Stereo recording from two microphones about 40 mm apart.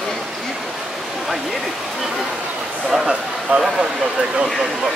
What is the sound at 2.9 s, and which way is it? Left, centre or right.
Speech, centre.